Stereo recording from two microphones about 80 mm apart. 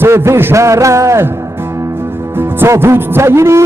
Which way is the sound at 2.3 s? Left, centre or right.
Right.